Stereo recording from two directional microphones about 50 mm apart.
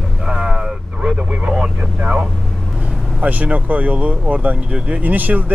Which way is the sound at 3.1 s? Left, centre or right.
Right.